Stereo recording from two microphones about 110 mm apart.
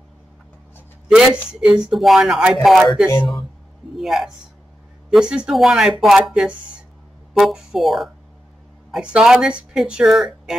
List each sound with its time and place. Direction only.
1.0 s speech: 10° right (ahead or behind)
3.9 s a man's voice: centre (ahead or behind)